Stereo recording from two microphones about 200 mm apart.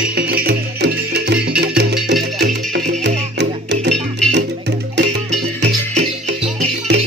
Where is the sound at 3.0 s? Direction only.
60° right (ahead or behind).